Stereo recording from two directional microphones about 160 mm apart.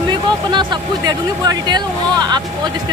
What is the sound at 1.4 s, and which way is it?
Speech, 25° right (ahead or behind).